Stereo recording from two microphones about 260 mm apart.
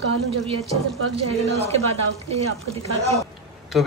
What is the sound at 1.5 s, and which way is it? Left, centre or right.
Speech, right.